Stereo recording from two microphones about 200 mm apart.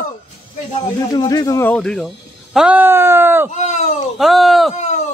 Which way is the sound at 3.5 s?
35° left (ahead or behind).